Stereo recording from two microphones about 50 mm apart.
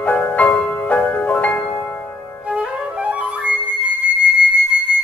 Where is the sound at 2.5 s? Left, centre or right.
Centre.